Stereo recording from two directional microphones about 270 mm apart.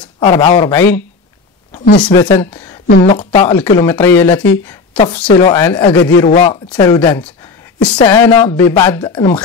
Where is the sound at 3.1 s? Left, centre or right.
Left.